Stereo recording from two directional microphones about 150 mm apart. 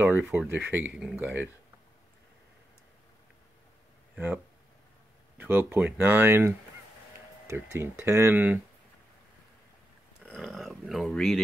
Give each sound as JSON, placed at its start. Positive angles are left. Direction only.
{"t": 0.0, "sound": "speech", "side_deg": -10}
{"t": 5.4, "sound": "speech", "side_deg": -15}
{"t": 10.3, "sound": "speech", "side_deg": 0}